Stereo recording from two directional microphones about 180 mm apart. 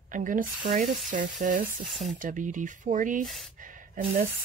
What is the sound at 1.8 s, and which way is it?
Speech, centre (ahead or behind).